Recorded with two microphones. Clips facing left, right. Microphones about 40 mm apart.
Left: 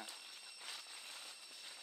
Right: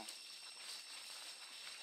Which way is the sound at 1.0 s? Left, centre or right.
Left.